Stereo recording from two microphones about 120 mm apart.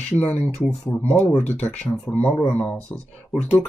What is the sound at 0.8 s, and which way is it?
Speech, 10° left (ahead or behind).